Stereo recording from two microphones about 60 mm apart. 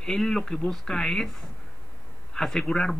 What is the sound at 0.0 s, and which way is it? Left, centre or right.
A man's voice, centre.